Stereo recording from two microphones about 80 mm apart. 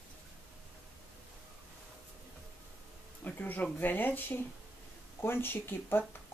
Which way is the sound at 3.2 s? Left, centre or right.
Left.